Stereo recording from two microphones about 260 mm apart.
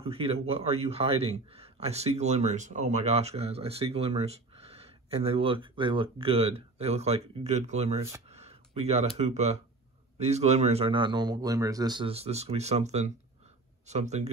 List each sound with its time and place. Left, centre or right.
0.0 s a man's voice: right